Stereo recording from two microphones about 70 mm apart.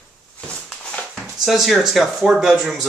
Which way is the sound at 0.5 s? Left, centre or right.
Centre.